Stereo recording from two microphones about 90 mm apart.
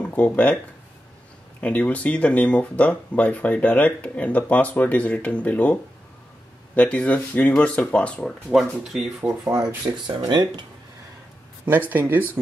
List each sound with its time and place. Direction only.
0.1 s speech: 15° left (ahead or behind)
1.6 s speech: 15° left (ahead or behind)
8.5 s speech: centre (ahead or behind)
9.2 s speech: 30° right (ahead or behind)
10.0 s speech: 50° right (ahead or behind)
11.9 s speech: 20° right (ahead or behind)